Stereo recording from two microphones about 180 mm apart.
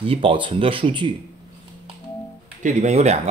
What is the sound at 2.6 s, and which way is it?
Speech, 40° right (ahead or behind).